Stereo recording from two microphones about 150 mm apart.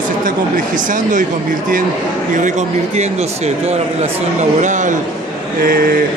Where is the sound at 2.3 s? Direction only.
55° right (ahead or behind).